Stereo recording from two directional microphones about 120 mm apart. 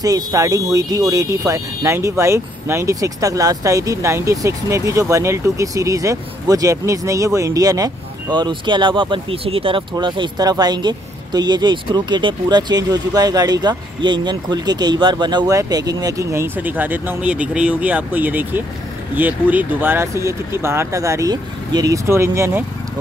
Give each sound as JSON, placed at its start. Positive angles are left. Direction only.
{"t": 0.0, "sound": "speech", "side_deg": -30}